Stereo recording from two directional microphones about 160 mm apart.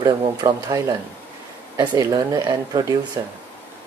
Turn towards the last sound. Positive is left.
turn(degrees=-25)  # may be behind; listen again after turning